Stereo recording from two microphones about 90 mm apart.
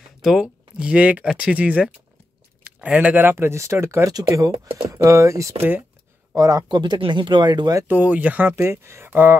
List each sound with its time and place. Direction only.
0.2 s speech: 5° right (ahead or behind); by 5.6 s 35° right (ahead or behind)
5.6 s speech: 20° right (ahead or behind)
6.3 s speech: 40° right (ahead or behind)
6.7 s speech: 60° right (ahead or behind)
7.9 s speech: 15° right (ahead or behind)
8.5 s speech: 30° right (ahead or behind)